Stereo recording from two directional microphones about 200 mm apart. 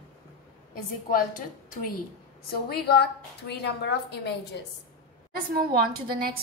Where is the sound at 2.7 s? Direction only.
55° left (ahead or behind).